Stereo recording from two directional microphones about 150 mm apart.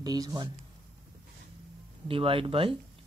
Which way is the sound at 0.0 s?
25° right (ahead or behind).